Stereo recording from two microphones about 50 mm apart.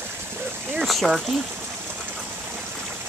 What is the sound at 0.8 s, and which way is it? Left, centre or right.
Speech, centre.